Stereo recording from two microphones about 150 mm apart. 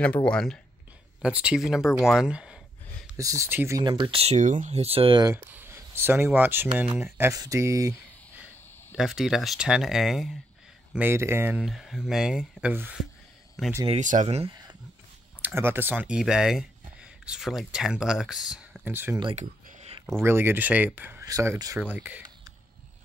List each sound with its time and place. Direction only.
0.0 s speech: 5° left (ahead or behind)
1.2 s speech: 5° right (ahead or behind)
3.2 s speech: 20° right (ahead or behind)
3.8 s speech: 35° right (ahead or behind)
5.2 s speech: 15° right (ahead or behind)
8.9 s speech: centre (ahead or behind)
10.9 s speech: 15° right (ahead or behind)
11.6 s speech: centre (ahead or behind)
13.8 s speech: 55° right (ahead or behind)
15.4 s speech: 15° right (ahead or behind)
18.9 s speech: 15° right (ahead or behind)
19.3 s a sound: 45° right (ahead or behind)
20.2 s speech: 15° right (ahead or behind)
21.7 s speech: 10° right (ahead or behind)